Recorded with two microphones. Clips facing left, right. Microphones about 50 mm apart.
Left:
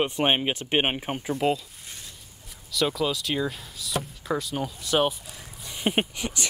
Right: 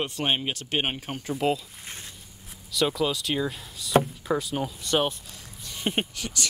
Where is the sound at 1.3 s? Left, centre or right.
Centre.